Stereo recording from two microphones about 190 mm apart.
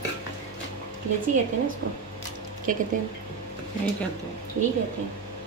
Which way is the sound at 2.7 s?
45° right (ahead or behind).